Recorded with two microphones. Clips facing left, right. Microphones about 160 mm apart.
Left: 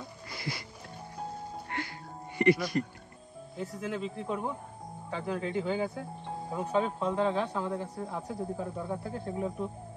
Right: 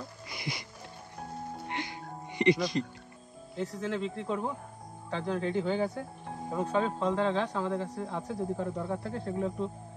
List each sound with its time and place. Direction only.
0.3 s music: 15° right (ahead or behind)
1.7 s music: 20° right (ahead or behind)
3.8 s speech: 5° left (ahead or behind)